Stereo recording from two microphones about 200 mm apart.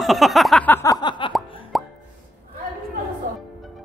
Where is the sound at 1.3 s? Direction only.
Centre (ahead or behind).